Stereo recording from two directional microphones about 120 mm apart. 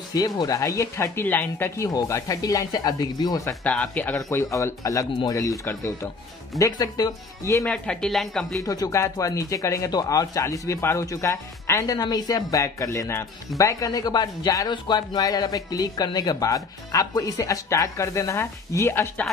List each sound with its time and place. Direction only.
0.1 s speech: 30° left (ahead or behind)
1.9 s speech: 30° left (ahead or behind)
3.4 s speech: 10° left (ahead or behind); by 7.6 s 30° left (ahead or behind)
7.6 s speech: 5° left (ahead or behind)
8.6 s speech: 30° left (ahead or behind)